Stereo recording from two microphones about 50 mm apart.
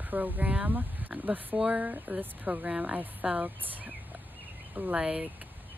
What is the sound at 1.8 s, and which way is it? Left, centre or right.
Speech, right.